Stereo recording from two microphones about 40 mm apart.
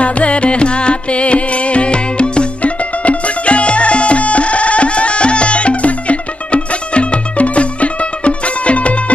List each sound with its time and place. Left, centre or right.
0.0 s music: left